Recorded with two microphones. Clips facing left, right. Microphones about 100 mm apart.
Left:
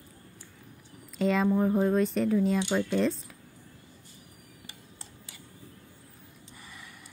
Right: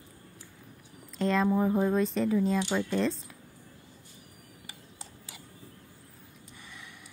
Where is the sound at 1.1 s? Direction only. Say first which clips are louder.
Left 1 dB; centre (ahead or behind).